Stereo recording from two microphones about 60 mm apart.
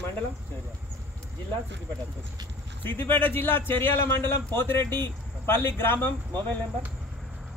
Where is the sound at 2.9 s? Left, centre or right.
Left.